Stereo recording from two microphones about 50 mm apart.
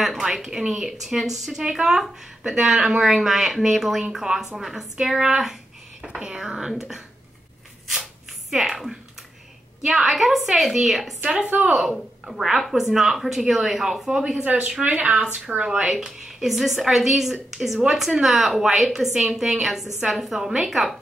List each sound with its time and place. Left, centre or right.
0.0 s a woman's voice: centre
6.0 s a woman's voice: centre
8.0 s a sound: centre
9.8 s a woman's voice: centre
14.4 s speech: right
15.9 s a woman's voice: centre